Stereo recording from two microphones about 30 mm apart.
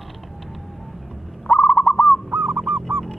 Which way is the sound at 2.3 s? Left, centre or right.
Right.